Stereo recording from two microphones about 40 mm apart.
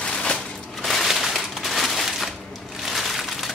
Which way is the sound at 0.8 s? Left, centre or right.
Centre.